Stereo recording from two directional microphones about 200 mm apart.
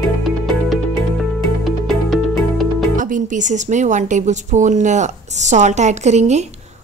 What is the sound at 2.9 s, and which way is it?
A woman's voice, 40° right (ahead or behind).